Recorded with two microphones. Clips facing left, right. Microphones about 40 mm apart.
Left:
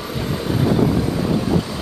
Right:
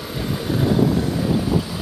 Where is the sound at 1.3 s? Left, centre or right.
Centre.